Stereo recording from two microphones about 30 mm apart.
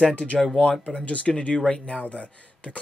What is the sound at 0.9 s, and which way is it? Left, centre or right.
Speech, left.